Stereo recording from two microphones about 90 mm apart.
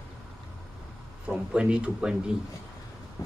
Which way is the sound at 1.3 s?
10° right (ahead or behind).